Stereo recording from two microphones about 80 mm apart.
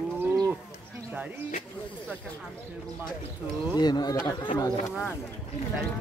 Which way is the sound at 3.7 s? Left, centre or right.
Left.